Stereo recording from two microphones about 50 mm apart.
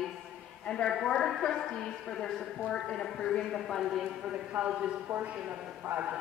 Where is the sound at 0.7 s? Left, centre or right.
Centre.